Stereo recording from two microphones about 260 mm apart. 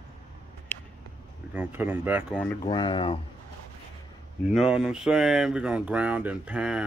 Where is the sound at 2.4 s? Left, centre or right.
Centre.